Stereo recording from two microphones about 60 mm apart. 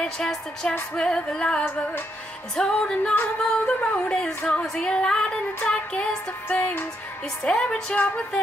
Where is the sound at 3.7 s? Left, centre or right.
Left.